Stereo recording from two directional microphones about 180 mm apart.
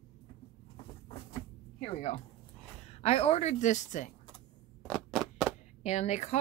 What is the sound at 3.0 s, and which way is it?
A woman's voice, 35° left (ahead or behind).